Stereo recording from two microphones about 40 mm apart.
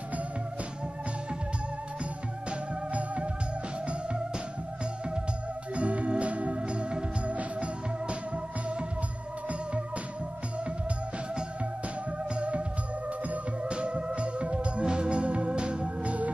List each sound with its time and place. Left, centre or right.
5.8 s music: right
12.4 s music: right
13.7 s music: right